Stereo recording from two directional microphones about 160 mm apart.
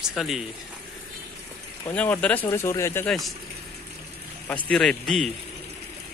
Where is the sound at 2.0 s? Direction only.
10° left (ahead or behind).